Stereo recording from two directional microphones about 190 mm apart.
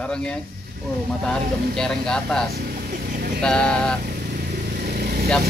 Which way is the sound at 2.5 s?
50° right (ahead or behind).